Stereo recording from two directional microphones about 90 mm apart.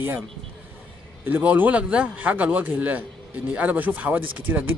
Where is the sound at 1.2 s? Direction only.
20° right (ahead or behind).